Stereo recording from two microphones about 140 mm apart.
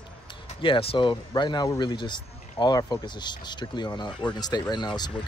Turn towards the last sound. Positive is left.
turn(degrees=30)  # may be behind; listen again after turning